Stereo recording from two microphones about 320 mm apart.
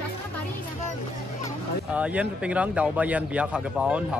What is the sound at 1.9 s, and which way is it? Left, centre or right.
Speech, centre.